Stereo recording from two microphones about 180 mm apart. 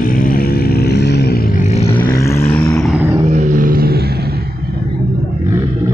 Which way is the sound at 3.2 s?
40° right (ahead or behind).